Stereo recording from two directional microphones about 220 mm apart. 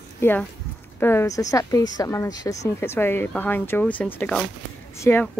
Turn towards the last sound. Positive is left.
turn(degrees=10)  # may be behind; listen again after turning